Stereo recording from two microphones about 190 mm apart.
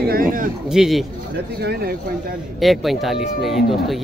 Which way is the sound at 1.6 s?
55° right (ahead or behind).